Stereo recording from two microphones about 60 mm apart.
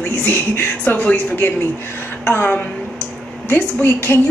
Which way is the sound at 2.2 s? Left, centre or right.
Left.